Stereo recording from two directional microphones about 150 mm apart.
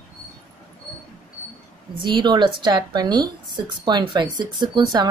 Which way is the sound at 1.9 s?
30° right (ahead or behind).